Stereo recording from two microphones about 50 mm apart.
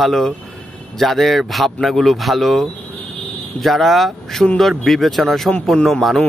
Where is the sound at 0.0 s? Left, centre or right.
Centre.